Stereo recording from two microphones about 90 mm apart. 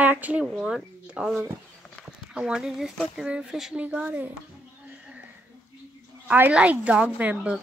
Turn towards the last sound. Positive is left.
turn(degrees=-15)  # may be behind; listen again after turning